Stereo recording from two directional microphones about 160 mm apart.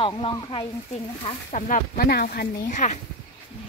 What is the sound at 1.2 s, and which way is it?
Speech, 45° left (ahead or behind).